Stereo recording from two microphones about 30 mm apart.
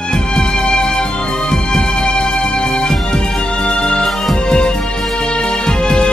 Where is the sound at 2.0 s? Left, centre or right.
Left.